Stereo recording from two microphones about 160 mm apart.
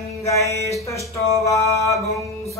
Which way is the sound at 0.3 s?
20° left (ahead or behind).